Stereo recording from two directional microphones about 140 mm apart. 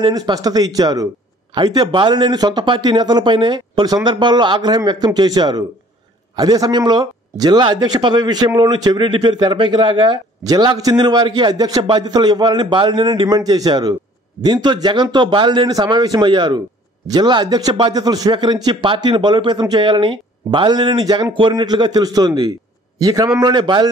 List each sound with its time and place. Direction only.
0.0 s speech: 25° right (ahead or behind)